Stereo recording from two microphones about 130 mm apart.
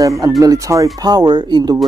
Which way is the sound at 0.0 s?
25° right (ahead or behind).